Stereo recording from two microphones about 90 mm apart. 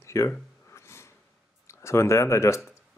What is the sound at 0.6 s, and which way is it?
Sniff, 30° left (ahead or behind).